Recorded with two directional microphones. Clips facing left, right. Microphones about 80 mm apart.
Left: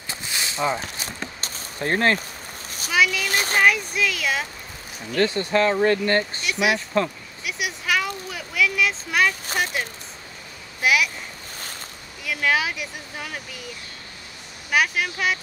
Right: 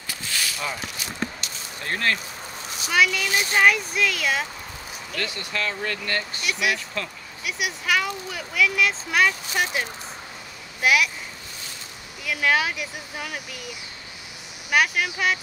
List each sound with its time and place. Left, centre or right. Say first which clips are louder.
0.1 s a sound: even; left
2.9 s speech: even; centre
3.3 s speech: left 1 dB; left
3.5 s speech: even; centre
5.2 s speech: left 10 dB; left
7.4 s speech: even; centre
12.3 s speech: even; centre
14.7 s speech: even; centre